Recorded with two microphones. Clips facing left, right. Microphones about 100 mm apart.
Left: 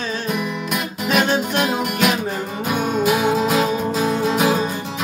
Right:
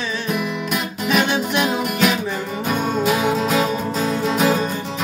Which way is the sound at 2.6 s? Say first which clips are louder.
Left 1 dB; 10° left (ahead or behind).